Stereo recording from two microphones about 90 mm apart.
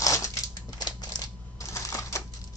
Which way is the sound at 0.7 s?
50° left (ahead or behind).